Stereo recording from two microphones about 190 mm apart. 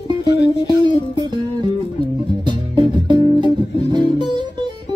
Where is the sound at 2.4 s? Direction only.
25° right (ahead or behind).